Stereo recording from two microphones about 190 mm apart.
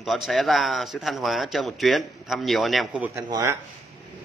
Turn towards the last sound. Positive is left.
turn(degrees=-20)  # may be behind; listen again after turning